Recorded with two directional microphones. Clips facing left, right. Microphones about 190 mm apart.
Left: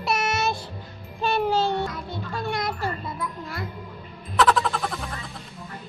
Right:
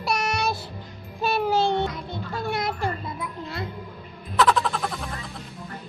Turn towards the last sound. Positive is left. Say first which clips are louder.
# even
turn(degrees=0)  # may be behind; listen again after turning